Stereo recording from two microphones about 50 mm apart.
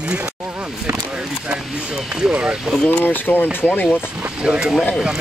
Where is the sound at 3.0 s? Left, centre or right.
Left.